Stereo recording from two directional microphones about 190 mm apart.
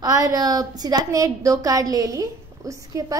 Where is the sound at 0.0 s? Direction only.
20° right (ahead or behind).